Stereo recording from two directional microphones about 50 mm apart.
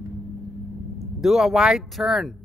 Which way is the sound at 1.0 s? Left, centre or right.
Centre.